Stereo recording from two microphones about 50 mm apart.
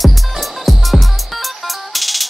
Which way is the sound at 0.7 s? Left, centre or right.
Centre.